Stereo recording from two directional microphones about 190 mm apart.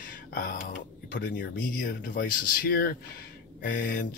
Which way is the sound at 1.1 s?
50° left (ahead or behind).